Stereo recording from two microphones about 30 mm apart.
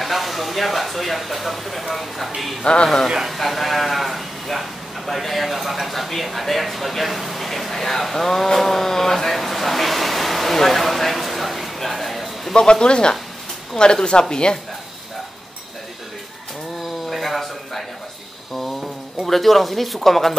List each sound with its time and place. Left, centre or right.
0.0 s speech: centre
2.6 s speech: left
3.3 s speech: centre
9.4 s a sound: centre
12.8 s speech: left
17.1 s a sound: centre
19.2 s speech: centre